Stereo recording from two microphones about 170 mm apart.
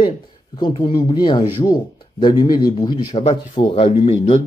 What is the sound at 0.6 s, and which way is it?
Speech, 25° left (ahead or behind).